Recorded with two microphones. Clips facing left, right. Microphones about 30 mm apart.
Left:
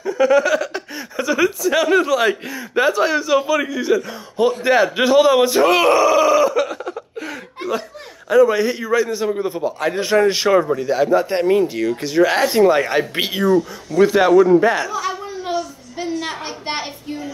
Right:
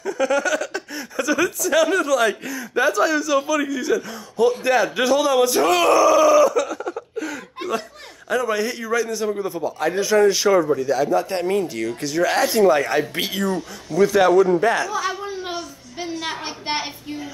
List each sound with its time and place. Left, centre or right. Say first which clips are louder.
0.0 s speech: left 5 dB; centre; by 7.2 s left
8.3 s a man's voice: left 8 dB; centre
14.9 s a sound: left 1 dB; centre